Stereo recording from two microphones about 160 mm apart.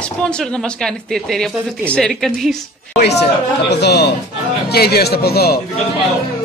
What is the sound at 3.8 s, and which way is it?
Speech, 90° left.